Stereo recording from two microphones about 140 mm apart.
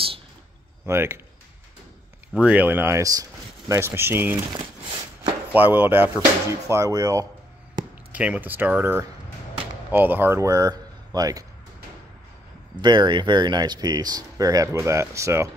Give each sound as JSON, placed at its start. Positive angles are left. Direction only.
{"t": 0.8, "sound": "speech", "side_deg": -20}
{"t": 2.3, "sound": "speech", "side_deg": -10}
{"t": 4.5, "sound": "a sound", "side_deg": -30}
{"t": 5.5, "sound": "speech", "side_deg": -15}
{"t": 8.1, "sound": "speech", "side_deg": -10}
{"t": 12.8, "sound": "speech", "side_deg": -30}